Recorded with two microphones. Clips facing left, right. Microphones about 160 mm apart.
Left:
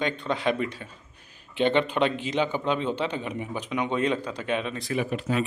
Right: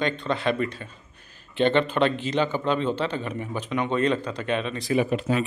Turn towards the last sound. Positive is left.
turn(degrees=-35)  # may be behind; listen again after turning